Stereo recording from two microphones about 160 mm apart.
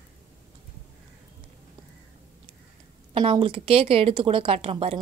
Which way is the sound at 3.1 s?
35° right (ahead or behind).